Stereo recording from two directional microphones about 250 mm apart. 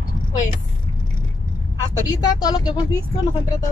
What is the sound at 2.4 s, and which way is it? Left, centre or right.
Speech, centre.